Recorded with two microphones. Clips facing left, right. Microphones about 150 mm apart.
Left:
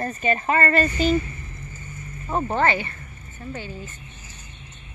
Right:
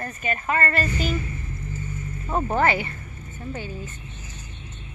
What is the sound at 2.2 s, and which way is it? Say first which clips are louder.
Speech: even; 5° left (ahead or behind).